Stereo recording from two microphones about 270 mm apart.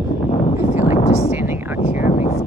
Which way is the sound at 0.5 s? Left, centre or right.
Centre.